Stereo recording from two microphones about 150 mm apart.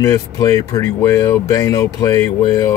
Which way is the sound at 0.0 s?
25° left (ahead or behind).